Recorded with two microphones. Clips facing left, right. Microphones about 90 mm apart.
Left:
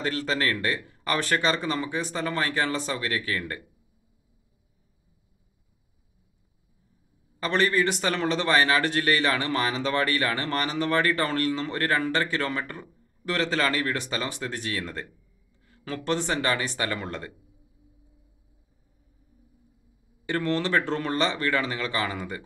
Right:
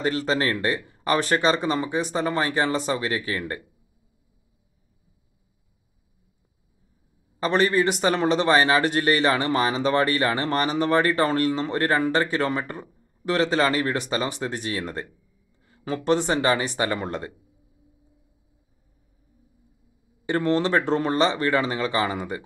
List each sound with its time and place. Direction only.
0.0 s a man's voice: 20° right (ahead or behind)
7.3 s a man's voice: 20° right (ahead or behind)
20.2 s a man's voice: 20° right (ahead or behind)